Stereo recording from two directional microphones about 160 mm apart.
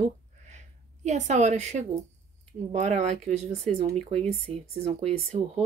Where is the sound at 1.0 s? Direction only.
45° right (ahead or behind).